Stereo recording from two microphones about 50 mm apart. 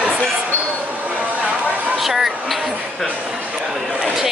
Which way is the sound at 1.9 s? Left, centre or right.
Centre.